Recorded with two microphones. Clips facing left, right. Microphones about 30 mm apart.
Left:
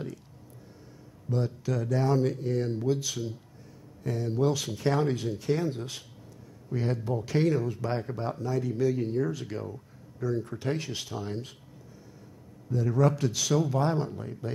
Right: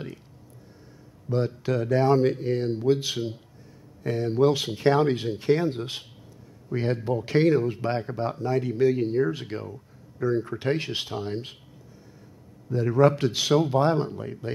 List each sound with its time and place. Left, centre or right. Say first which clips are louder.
1.3 s speech: right 5 dB; right
12.6 s speech: right 5 dB; right